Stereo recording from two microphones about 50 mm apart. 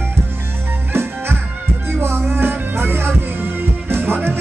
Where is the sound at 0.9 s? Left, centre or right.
Right.